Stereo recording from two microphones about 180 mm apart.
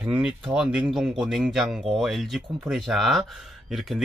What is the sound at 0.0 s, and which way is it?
Speech, 5° right (ahead or behind).